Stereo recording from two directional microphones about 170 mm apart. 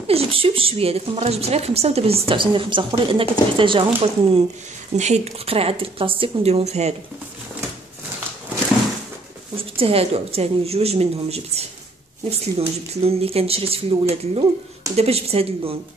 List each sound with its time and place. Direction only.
0.0 s a woman's voice: 35° right (ahead or behind)
9.6 s a woman's voice: 35° right (ahead or behind)